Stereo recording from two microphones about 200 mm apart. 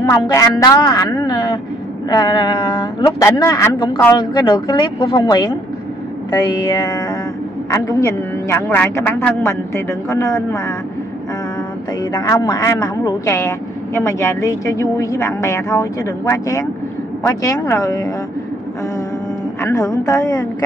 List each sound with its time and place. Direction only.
0.1 s a woman's voice: 15° left (ahead or behind)
7.7 s speech: 15° left (ahead or behind)
12.0 s speech: 20° left (ahead or behind)
19.6 s speech: 15° left (ahead or behind)